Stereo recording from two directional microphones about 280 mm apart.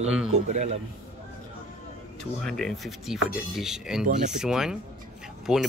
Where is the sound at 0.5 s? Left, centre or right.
Right.